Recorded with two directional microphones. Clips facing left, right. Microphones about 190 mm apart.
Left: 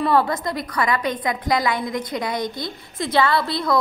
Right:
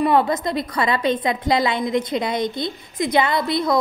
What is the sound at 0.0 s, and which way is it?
A woman's voice, 20° right (ahead or behind).